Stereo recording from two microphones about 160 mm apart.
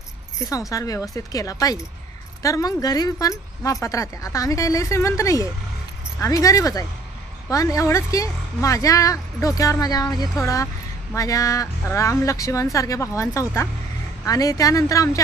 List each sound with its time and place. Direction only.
0.4 s speech: 20° left (ahead or behind)